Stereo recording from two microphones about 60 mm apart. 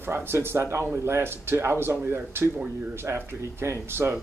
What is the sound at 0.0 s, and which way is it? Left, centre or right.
Speech, right.